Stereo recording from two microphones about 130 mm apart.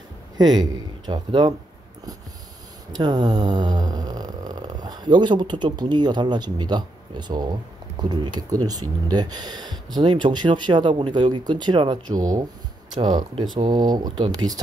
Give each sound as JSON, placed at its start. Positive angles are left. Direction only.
{"t": 0.4, "sound": "speech", "side_deg": -35}
{"t": 2.9, "sound": "speech", "side_deg": -30}
{"t": 13.7, "sound": "speech", "side_deg": -30}